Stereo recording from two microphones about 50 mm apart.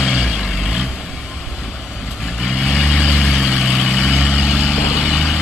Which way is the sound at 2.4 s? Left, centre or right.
Centre.